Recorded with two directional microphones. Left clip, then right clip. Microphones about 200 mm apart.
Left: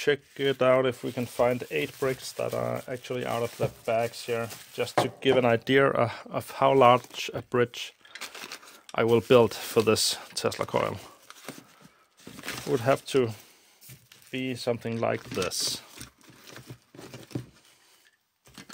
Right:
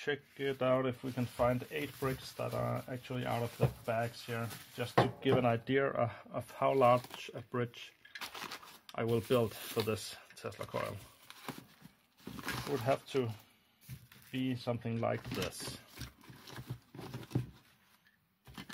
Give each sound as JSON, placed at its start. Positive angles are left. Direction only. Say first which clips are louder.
{"t": 0.0, "sound": "speech", "louder": "left 11 dB", "side_deg": 60}
{"t": 8.1, "sound": "a sound", "louder": "left 4 dB", "side_deg": 15}
{"t": 8.9, "sound": "speech", "louder": "left 12 dB", "side_deg": 55}
{"t": 12.8, "sound": "speech", "louder": "left 10 dB", "side_deg": 55}
{"t": 14.3, "sound": "speech", "louder": "left 8 dB", "side_deg": 60}
{"t": 15.6, "sound": "a sound", "louder": "left 14 dB", "side_deg": 15}